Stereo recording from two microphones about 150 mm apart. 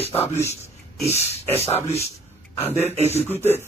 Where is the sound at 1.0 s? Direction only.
45° left (ahead or behind).